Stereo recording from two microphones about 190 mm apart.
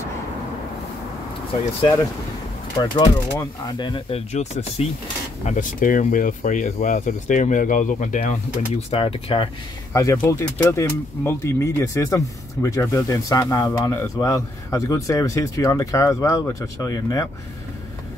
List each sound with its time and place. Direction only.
2.8 s speech: 20° left (ahead or behind)
10.1 s speech: 10° left (ahead or behind)